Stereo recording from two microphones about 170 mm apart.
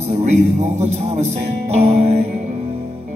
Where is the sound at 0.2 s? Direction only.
40° right (ahead or behind).